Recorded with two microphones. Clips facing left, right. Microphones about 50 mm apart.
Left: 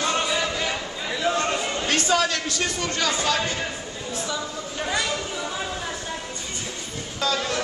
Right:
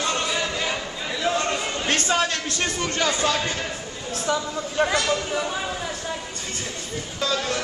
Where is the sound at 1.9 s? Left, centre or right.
Right.